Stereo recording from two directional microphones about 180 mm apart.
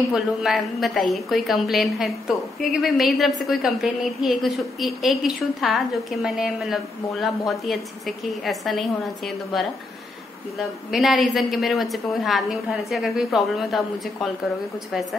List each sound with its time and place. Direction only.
0.1 s a woman's voice: centre (ahead or behind)
10.9 s a woman's voice: centre (ahead or behind)